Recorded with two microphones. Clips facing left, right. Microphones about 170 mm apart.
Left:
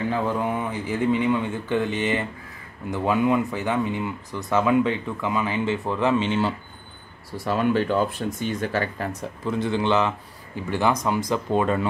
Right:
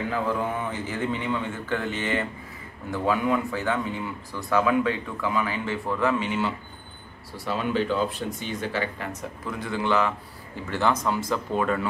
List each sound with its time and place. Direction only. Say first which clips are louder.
0.6 s speech: left 3 dB; 15° left (ahead or behind)
7.4 s speech: left 4 dB; 50° left (ahead or behind)
9.5 s speech: left 4 dB; 25° left (ahead or behind)